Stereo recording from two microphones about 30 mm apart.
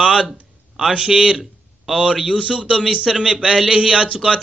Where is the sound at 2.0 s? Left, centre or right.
Right.